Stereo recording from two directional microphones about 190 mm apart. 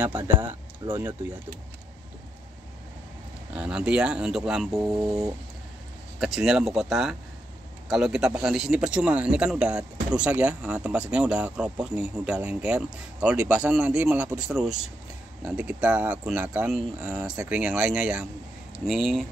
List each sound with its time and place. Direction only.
0.0 s speech: 10° right (ahead or behind)
0.5 s speech: 25° right (ahead or behind)
3.5 s speech: 5° right (ahead or behind)
4.7 s speech: 15° right (ahead or behind)
6.1 s speech: centre (ahead or behind)